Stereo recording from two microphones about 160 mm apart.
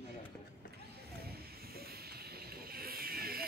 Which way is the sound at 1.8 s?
75° right (ahead or behind).